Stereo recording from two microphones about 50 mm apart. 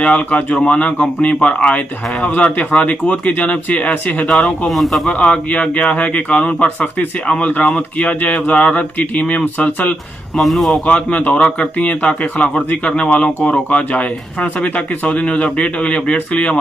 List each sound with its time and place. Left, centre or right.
0.0 s a man's voice: left
4.6 s a man's voice: centre
5.2 s a man's voice: left
10.3 s a man's voice: centre
10.9 s a man's voice: left